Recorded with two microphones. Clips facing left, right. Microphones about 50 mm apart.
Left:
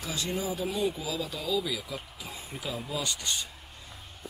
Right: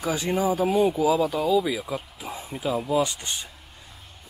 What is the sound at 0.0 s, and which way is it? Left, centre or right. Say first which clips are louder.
Speech: right 9 dB; right.